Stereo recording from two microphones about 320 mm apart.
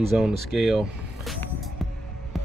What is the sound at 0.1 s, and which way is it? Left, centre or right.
Speech, centre.